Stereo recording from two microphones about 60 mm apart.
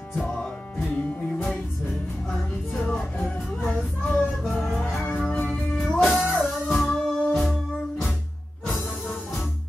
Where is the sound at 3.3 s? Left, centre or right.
Centre.